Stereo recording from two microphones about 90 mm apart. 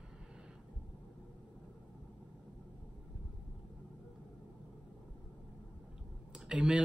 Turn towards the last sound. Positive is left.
turn(degrees=-10)  # may be behind; listen again after turning